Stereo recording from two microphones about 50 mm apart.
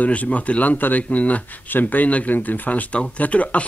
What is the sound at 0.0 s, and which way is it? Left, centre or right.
A man's voice, left.